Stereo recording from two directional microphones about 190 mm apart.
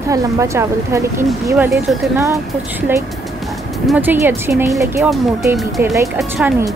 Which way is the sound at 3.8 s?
10° right (ahead or behind).